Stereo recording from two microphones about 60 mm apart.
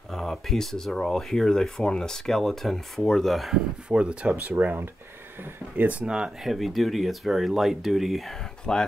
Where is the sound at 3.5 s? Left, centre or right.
Centre.